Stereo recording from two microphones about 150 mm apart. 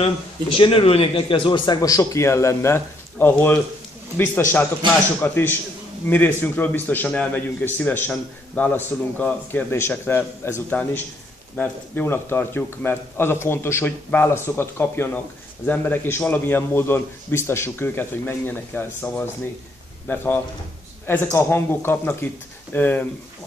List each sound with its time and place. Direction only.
0.6 s a man's voice: 35° left (ahead or behind); by 23.0 s 10° left (ahead or behind)